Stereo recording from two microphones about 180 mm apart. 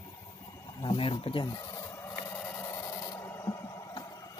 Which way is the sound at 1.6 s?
15° left (ahead or behind).